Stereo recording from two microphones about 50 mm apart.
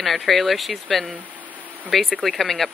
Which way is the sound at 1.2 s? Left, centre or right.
Right.